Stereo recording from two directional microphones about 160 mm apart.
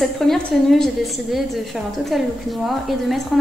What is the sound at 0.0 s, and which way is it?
Speech, centre (ahead or behind).